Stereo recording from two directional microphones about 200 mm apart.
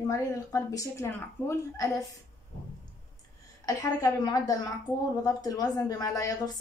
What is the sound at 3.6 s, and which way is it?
A woman's voice, 15° left (ahead or behind).